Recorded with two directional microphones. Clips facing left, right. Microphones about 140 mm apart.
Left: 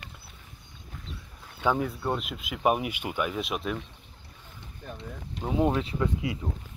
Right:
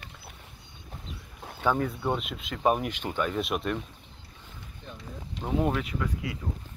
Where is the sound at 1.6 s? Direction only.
5° left (ahead or behind).